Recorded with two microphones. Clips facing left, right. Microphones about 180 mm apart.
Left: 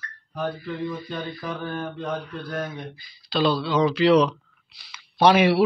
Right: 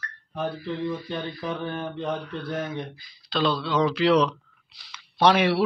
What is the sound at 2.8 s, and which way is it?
Speech, centre (ahead or behind).